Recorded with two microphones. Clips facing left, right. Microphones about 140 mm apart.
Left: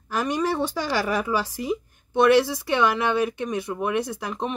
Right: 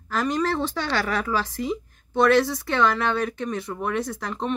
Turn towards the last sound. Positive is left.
turn(degrees=10)  # may be behind; listen again after turning